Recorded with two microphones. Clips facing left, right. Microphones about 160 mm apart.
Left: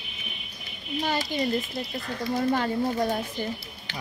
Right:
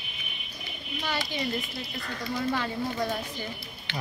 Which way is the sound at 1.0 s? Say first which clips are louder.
Left 5 dB; 45° left (ahead or behind).